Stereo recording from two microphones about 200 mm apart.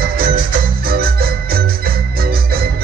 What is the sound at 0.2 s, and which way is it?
Music, 50° right (ahead or behind).